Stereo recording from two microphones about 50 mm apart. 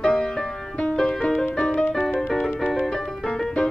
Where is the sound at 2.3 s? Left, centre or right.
Centre.